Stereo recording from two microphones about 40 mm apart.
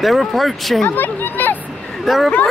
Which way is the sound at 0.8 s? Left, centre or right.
Left.